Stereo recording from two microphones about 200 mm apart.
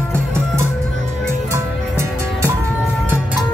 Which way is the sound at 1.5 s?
15° right (ahead or behind).